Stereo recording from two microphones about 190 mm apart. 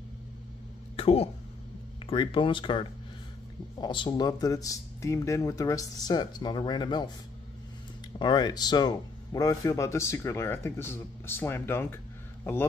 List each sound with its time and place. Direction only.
0.9 s speech: 30° left (ahead or behind)
8.2 s a man's voice: 20° left (ahead or behind)